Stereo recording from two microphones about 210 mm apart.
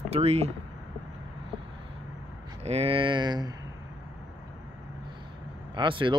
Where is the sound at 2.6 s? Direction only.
30° right (ahead or behind).